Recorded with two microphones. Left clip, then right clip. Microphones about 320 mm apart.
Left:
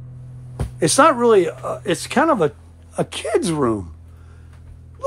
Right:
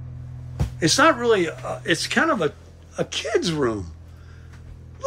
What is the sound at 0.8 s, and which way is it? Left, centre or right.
Speech, centre.